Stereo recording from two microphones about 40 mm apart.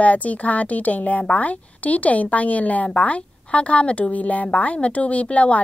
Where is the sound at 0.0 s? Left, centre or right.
Left.